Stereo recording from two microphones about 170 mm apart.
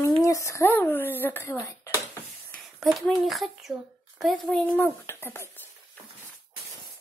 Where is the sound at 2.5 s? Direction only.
Centre (ahead or behind).